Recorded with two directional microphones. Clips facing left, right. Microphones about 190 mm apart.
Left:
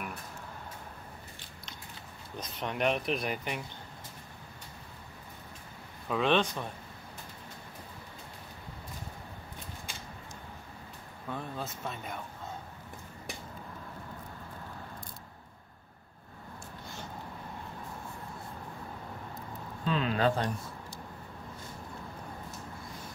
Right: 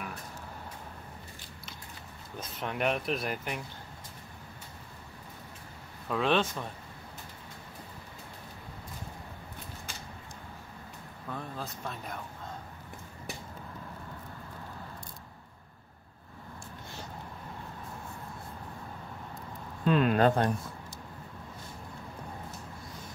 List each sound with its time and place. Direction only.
2.3 s speech: 5° right (ahead or behind)
6.0 s speech: centre (ahead or behind)
11.2 s speech: centre (ahead or behind)
19.8 s speech: 55° right (ahead or behind)